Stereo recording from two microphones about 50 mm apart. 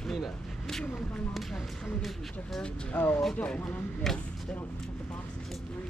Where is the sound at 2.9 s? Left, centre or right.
Left.